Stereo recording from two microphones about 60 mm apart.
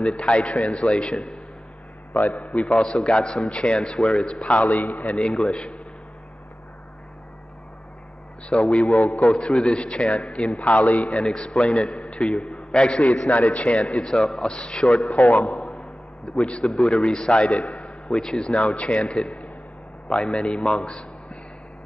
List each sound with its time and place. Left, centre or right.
0.0 s a man's voice: centre
2.1 s a man's voice: left
2.5 s a man's voice: centre
5.1 s a man's voice: centre
8.5 s a man's voice: centre
9.2 s a man's voice: centre
15.1 s a man's voice: left
15.4 s a sound: centre
16.4 s a man's voice: centre